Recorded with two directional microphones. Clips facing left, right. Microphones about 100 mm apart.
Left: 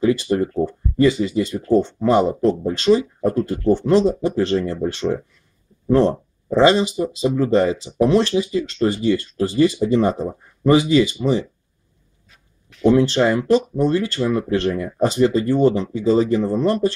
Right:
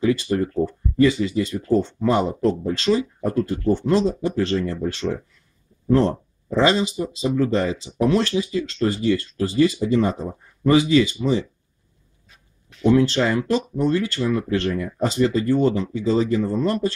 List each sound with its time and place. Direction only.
0.0 s speech: 25° left (ahead or behind)
12.8 s speech: 20° left (ahead or behind)